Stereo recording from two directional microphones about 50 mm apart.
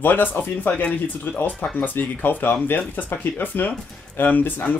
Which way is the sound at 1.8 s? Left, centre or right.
Left.